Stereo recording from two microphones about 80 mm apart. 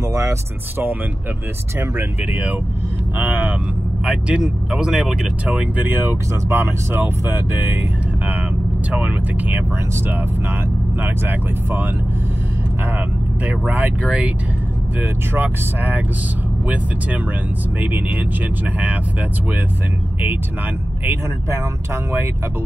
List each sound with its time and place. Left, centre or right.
0.1 s speech: right
3.2 s speech: right
5.9 s speech: right
8.9 s speech: centre
11.0 s speech: right
13.5 s speech: right
21.0 s speech: right